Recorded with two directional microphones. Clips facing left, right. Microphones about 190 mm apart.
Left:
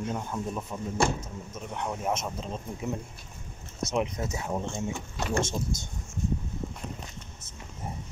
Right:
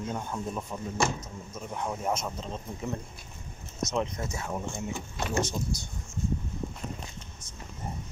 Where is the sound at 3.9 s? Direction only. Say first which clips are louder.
Left 3 dB; 15° left (ahead or behind).